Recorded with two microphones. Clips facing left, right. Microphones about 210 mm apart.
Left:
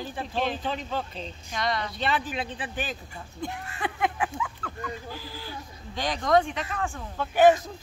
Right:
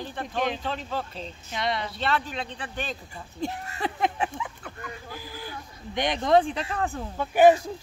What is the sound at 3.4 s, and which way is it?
Speech, 35° right (ahead or behind).